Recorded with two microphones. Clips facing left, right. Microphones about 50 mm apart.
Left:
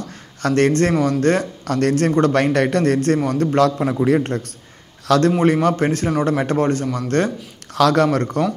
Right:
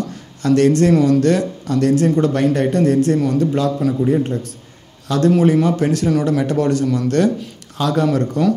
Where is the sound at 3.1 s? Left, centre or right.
Left.